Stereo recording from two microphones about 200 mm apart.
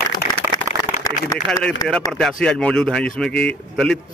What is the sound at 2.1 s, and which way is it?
Speech, centre (ahead or behind).